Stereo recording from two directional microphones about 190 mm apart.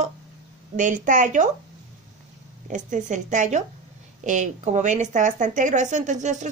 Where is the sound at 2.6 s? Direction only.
40° right (ahead or behind).